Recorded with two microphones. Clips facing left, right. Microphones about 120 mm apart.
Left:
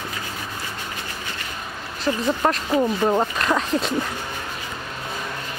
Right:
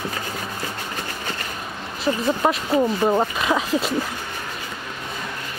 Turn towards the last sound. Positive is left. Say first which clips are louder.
# even
turn(degrees=-5)  # may be behind; listen again after turning